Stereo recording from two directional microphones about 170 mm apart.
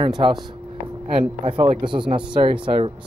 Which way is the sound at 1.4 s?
30° right (ahead or behind).